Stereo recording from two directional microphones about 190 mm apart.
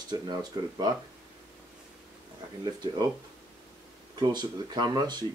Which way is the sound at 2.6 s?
20° right (ahead or behind).